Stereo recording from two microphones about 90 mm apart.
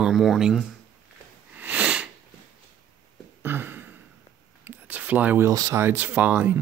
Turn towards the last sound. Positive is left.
turn(degrees=-15)  # may be behind; listen again after turning